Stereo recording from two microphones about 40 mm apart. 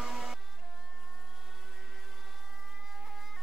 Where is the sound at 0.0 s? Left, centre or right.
Centre.